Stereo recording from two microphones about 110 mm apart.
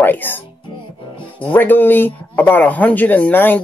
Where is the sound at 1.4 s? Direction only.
15° left (ahead or behind).